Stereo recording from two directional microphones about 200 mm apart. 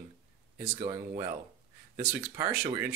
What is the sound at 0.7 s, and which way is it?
Speech, 30° right (ahead or behind).